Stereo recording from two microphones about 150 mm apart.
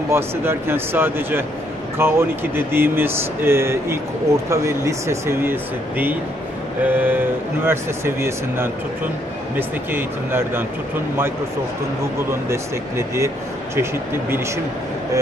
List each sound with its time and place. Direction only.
0.1 s speech: 15° right (ahead or behind)
12.3 s speech: 20° right (ahead or behind)